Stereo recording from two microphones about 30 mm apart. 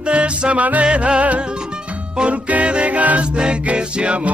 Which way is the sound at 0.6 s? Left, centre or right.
Right.